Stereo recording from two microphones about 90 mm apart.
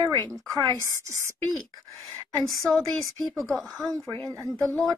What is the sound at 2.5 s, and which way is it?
Speech, centre (ahead or behind).